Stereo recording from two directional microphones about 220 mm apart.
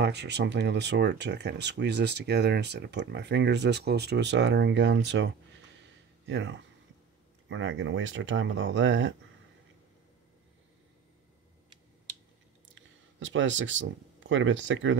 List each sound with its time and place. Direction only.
0.0 s speech: 50° right (ahead or behind)
12.6 s speech: 60° right (ahead or behind)